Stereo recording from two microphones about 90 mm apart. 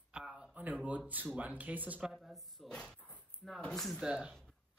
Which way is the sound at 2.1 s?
Centre (ahead or behind).